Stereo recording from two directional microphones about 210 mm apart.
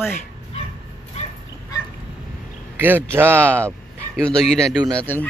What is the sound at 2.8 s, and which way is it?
Speech, 10° right (ahead or behind).